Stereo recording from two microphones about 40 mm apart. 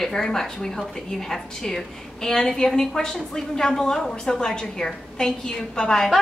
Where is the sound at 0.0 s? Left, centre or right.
Centre.